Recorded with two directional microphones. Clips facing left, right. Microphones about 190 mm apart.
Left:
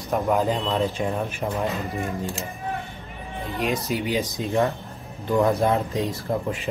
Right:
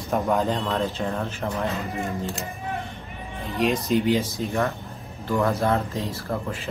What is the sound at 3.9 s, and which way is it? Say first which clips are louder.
Speech: right 4 dB; 15° left (ahead or behind).